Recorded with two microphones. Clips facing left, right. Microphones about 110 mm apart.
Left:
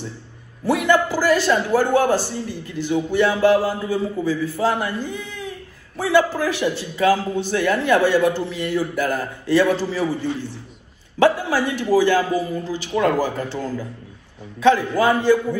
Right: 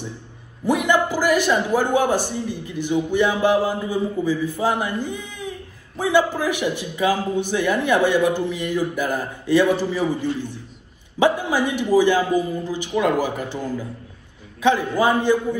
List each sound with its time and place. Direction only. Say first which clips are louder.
0.7 s a man's voice: left 1 dB; 15° right (ahead or behind)